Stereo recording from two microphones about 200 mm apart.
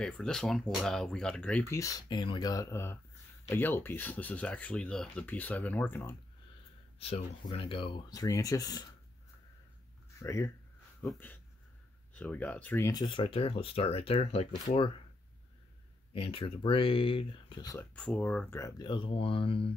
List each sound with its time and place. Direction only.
0.0 s speech: 5° left (ahead or behind)
7.0 s speech: 30° left (ahead or behind)
10.1 s speech: 15° left (ahead or behind)
16.1 s speech: 25° left (ahead or behind)
17.9 s speech: 5° left (ahead or behind); by 19.7 s 25° left (ahead or behind)